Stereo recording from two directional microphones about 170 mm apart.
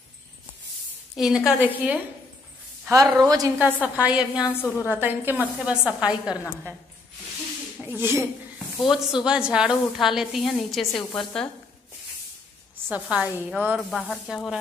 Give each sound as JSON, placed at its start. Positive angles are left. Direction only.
{"t": 1.1, "sound": "a woman's voice", "side_deg": -5}
{"t": 3.5, "sound": "a woman's voice", "side_deg": -10}
{"t": 4.5, "sound": "a woman's voice", "side_deg": 10}
{"t": 4.8, "sound": "a woman's voice", "side_deg": -10}
{"t": 7.8, "sound": "speech", "side_deg": -15}
{"t": 8.8, "sound": "a woman's voice", "side_deg": 0}
{"t": 12.9, "sound": "a woman's voice", "side_deg": -5}